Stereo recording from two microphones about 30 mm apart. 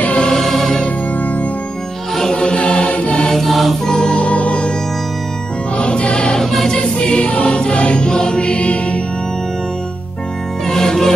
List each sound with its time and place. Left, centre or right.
0.3 s music: centre
2.3 s chant: left
2.6 s music: left
3.4 s music: centre
3.8 s music: left
4.2 s music: left
5.8 s music: left
6.4 s choir: centre
6.7 s choir: left
7.4 s music: left
8.1 s music: left
10.7 s music: centre